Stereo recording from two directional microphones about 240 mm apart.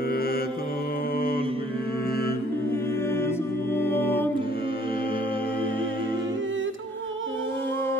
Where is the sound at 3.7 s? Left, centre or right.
Centre.